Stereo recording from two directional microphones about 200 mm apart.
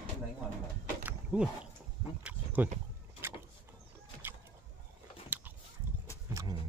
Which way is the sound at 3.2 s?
10° right (ahead or behind).